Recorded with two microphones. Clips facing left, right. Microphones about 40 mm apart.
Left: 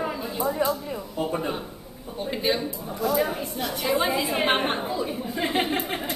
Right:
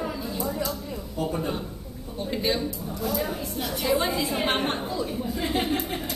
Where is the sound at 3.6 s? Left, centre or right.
Centre.